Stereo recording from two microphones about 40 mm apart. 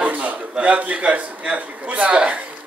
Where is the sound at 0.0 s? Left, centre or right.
Right.